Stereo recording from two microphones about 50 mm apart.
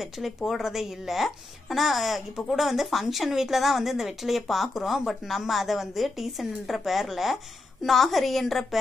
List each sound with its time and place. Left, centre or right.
0.5 s a woman's voice: centre